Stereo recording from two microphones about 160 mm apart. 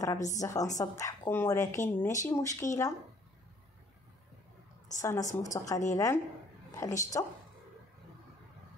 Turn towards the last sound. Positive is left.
turn(degrees=20)  # may be behind; listen again after turning